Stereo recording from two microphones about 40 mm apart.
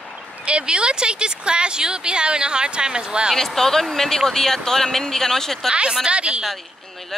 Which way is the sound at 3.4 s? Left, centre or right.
Centre.